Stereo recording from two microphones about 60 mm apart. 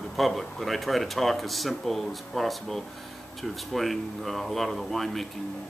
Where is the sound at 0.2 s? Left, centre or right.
Centre.